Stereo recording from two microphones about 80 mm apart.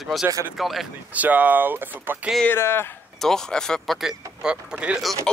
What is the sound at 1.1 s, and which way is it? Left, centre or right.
Speech, centre.